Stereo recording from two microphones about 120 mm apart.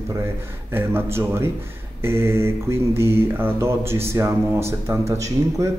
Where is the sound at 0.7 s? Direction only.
20° right (ahead or behind).